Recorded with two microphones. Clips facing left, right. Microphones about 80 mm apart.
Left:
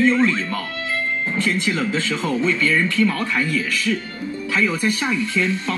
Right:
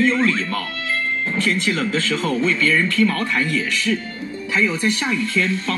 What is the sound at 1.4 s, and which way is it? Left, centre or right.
Speech, centre.